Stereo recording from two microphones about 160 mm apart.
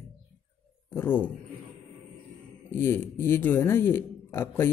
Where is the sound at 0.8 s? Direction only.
15° left (ahead or behind).